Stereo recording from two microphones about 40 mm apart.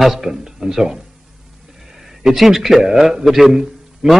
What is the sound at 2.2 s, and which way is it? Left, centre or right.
A man's voice, centre.